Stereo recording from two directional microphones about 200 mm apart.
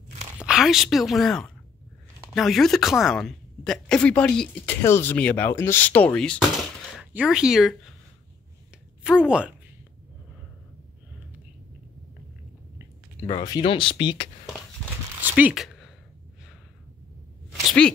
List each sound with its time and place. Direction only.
0.4 s a woman's voice: 5° right (ahead or behind)
9.0 s speech: 5° right (ahead or behind)
13.4 s speech: 20° left (ahead or behind)
15.2 s speech: 10° right (ahead or behind)
17.6 s speech: 5° left (ahead or behind)